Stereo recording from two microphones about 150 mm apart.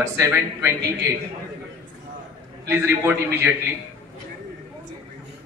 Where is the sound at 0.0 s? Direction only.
15° right (ahead or behind).